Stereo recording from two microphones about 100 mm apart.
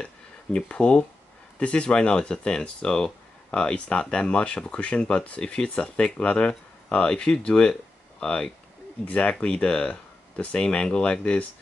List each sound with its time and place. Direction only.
0.0 s speech: 10° left (ahead or behind)